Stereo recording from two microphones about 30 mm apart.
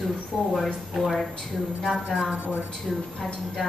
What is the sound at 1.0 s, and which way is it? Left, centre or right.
Speech, centre.